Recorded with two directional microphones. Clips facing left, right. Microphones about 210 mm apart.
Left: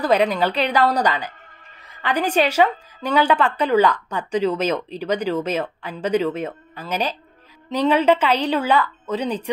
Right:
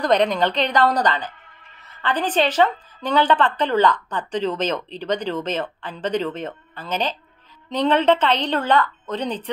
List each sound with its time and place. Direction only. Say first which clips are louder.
0.0 s a woman's voice: even; 5° left (ahead or behind)